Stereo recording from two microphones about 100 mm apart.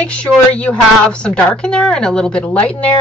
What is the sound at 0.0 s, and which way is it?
Speech, 10° left (ahead or behind).